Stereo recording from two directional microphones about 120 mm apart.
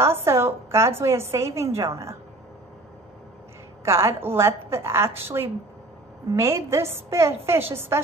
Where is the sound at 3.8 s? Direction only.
20° right (ahead or behind).